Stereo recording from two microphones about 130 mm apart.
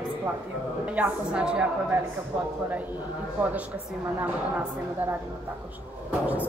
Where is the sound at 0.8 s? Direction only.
10° right (ahead or behind).